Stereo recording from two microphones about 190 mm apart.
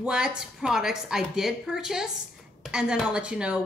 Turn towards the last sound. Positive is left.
turn(degrees=-5)  # may be behind; listen again after turning